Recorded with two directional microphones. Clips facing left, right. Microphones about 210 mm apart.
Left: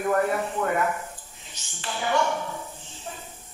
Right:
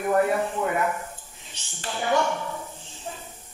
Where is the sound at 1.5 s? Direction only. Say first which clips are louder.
Right 1 dB; 30° right (ahead or behind).